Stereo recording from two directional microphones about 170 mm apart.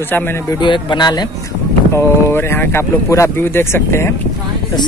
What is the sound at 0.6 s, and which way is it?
Speech, 25° left (ahead or behind).